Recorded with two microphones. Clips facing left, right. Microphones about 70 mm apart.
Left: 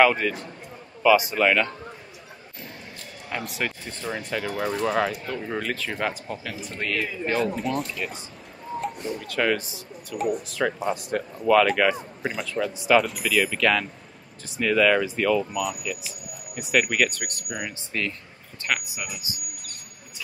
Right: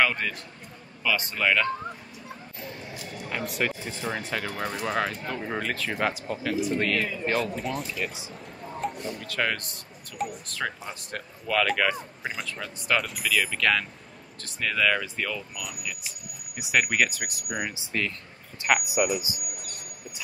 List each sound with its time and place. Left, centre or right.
0.0 s speech: centre
3.0 s speech: centre
18.9 s speech: right